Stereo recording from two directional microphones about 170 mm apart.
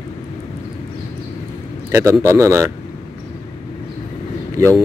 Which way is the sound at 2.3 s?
15° right (ahead or behind).